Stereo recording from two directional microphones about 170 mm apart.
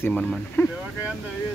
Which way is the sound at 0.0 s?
5° left (ahead or behind).